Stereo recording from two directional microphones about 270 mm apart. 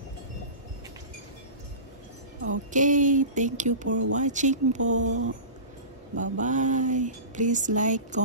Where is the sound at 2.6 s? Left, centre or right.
Right.